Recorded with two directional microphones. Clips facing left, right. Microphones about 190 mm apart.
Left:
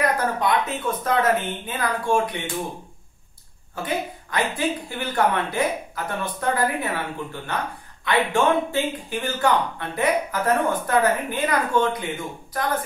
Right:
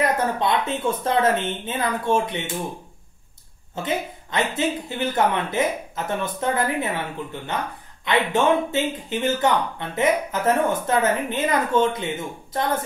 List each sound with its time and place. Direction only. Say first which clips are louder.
0.0 s speech: right 1 dB; 25° right (ahead or behind)
3.7 s speech: right 1 dB; 25° right (ahead or behind)
8.0 s speech: even; 20° right (ahead or behind)